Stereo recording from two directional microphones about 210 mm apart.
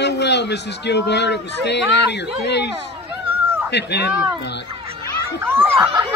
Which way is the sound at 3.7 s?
50° left (ahead or behind).